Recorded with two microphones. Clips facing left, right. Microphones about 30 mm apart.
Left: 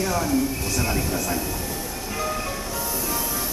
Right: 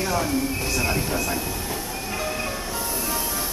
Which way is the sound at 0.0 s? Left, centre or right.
Centre.